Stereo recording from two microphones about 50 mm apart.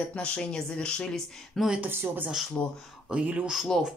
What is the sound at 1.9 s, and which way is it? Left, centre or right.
Speech, right.